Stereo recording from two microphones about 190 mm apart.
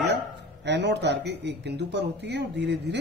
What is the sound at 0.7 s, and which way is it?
Speech, 65° right (ahead or behind).